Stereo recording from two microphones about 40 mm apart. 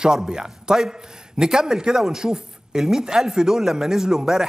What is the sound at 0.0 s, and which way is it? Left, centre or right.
Speech, centre.